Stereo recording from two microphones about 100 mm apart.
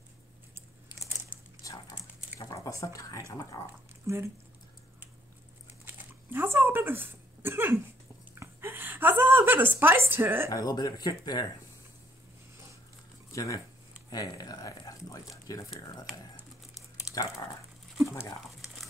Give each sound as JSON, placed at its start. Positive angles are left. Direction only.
{"t": 1.6, "sound": "a sound", "side_deg": 35}
{"t": 4.1, "sound": "speech", "side_deg": -30}
{"t": 5.9, "sound": "a sound", "side_deg": -25}
{"t": 10.5, "sound": "speech", "side_deg": 40}
{"t": 13.3, "sound": "speech", "side_deg": 35}
{"t": 17.1, "sound": "speech", "side_deg": 35}